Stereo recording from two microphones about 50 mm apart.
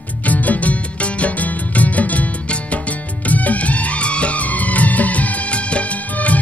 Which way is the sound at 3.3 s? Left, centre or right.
Left.